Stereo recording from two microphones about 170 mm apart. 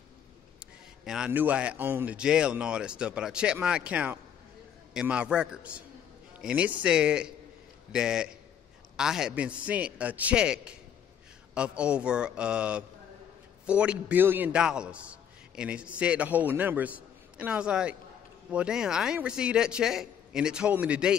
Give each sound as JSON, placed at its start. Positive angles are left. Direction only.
{"t": 1.0, "sound": "a man's voice", "side_deg": -5}